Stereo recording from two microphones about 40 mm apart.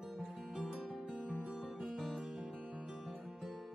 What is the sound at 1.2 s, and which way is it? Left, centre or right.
Music, right.